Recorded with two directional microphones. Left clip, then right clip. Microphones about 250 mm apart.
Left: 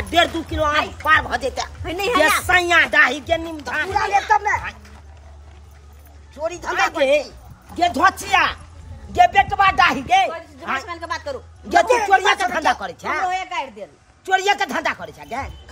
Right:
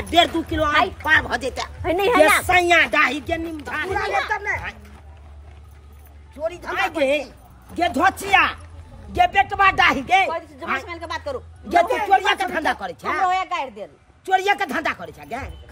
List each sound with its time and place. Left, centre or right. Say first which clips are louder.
0.1 s speech: right 1 dB; centre
1.8 s speech: right 2 dB; centre
2.4 s a woman's voice: left 1 dB; centre
6.3 s a woman's voice: left 2 dB; centre
10.9 s speech: left 1 dB; centre
12.3 s a woman's voice: left 3 dB; centre
13.3 s speech: right 2 dB; centre
14.2 s a woman's voice: left 1 dB; centre